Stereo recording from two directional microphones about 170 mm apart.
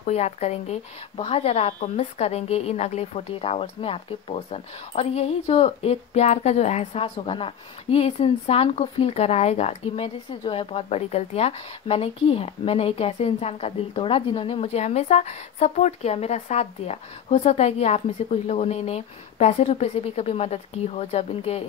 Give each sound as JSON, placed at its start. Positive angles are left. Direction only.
{"t": 0.0, "sound": "a woman's voice", "side_deg": 40}